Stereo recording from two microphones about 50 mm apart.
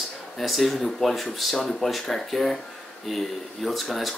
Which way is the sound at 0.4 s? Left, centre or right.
Centre.